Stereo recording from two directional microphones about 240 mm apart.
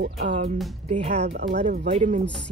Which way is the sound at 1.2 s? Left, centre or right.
Right.